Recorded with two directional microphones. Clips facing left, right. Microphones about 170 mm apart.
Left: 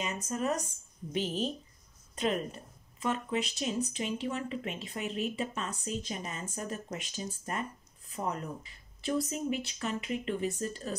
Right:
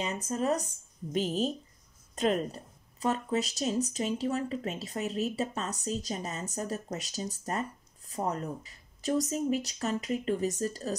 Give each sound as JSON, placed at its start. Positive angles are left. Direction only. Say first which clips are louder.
{"t": 0.0, "sound": "speech", "louder": "right 2 dB", "side_deg": -30}